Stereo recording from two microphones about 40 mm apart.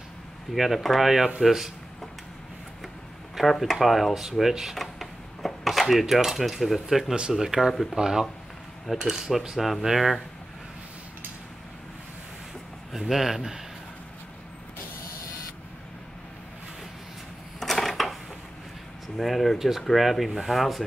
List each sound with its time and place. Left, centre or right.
0.5 s speech: centre
1.4 s cutlery: centre
3.3 s speech: centre
4.7 s cutlery: centre
7.2 s speech: right
7.4 s cutlery: centre
9.6 s speech: centre
13.1 s cutlery: centre
17.6 s a sound: centre
19.1 s speech: centre